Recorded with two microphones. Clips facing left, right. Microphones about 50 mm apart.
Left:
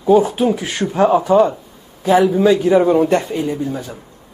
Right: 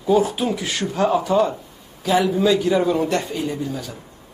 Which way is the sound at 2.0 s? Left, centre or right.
Centre.